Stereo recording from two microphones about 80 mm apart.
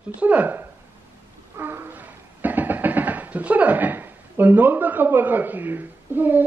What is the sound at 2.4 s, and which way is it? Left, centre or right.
A man's voice, right.